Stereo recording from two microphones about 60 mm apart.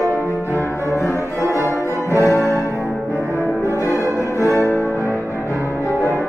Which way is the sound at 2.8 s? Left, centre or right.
Left.